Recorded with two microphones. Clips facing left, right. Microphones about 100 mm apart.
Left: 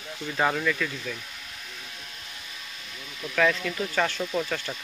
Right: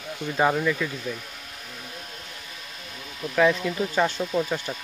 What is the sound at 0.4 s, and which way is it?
Speech, 15° right (ahead or behind).